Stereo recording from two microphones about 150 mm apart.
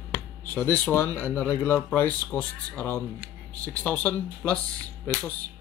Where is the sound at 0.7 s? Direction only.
10° left (ahead or behind).